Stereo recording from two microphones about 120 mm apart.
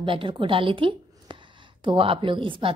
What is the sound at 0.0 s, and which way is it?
A woman's voice, 45° right (ahead or behind).